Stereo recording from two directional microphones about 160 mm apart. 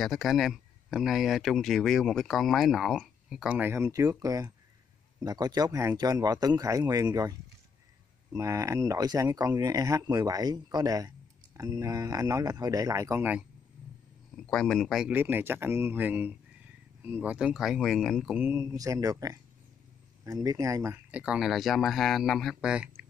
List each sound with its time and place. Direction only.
0.0 s speech: centre (ahead or behind)
14.3 s speech: 5° left (ahead or behind)
18.4 s speech: 15° right (ahead or behind)